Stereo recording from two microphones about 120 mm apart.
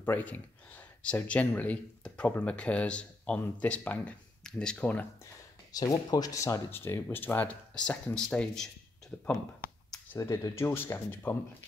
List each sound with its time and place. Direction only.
0.0 s speech: 15° left (ahead or behind)
5.2 s speech: 30° left (ahead or behind); by 8.6 s 5° left (ahead or behind)
10.1 s speech: 25° left (ahead or behind)